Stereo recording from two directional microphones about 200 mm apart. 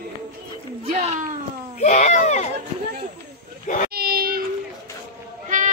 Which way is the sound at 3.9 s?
50° right (ahead or behind).